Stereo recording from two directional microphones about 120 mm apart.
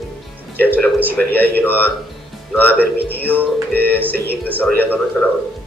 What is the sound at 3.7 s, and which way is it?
Music, 15° left (ahead or behind).